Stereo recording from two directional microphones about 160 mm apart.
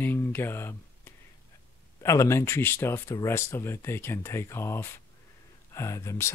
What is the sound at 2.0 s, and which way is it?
Speech, 20° left (ahead or behind).